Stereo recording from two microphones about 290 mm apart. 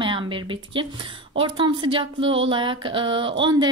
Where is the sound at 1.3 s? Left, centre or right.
Centre.